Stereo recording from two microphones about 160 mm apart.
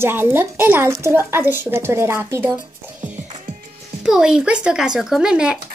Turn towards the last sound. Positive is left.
turn(degrees=-5)  # may be behind; listen again after turning